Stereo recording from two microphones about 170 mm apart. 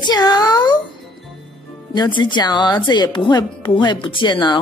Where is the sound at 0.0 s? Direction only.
25° left (ahead or behind).